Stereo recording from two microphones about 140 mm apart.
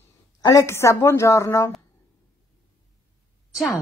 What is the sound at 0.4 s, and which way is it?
A woman's voice, 25° left (ahead or behind).